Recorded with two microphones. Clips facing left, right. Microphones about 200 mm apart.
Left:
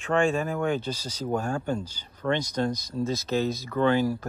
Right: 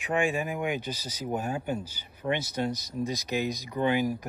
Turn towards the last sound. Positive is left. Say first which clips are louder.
# left 3 dB
turn(degrees=-15)  # may be behind; listen again after turning